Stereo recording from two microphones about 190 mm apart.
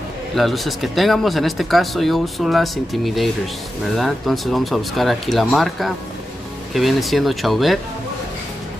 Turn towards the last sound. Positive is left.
turn(degrees=0)  # may be behind; listen again after turning